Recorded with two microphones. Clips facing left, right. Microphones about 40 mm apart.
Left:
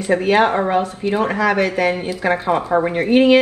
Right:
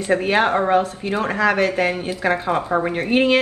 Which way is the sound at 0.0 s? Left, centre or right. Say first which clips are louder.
Left 2 dB; right.